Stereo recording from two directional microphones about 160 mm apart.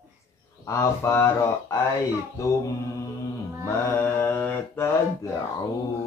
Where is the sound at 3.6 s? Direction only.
15° left (ahead or behind).